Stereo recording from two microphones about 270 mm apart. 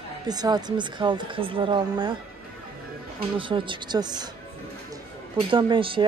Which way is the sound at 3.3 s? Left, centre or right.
Centre.